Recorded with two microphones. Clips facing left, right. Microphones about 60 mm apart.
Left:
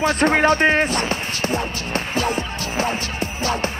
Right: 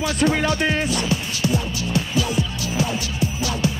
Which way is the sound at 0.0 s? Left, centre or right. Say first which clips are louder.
Left 4 dB; left.